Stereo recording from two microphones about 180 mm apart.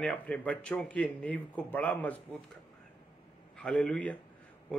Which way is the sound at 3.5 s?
5° left (ahead or behind).